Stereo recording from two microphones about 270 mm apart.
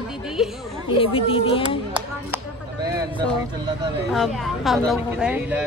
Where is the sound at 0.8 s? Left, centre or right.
Centre.